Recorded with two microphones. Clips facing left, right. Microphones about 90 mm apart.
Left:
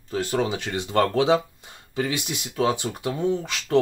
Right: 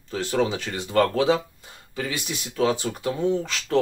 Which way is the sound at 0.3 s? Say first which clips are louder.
Right 2 dB; 10° left (ahead or behind).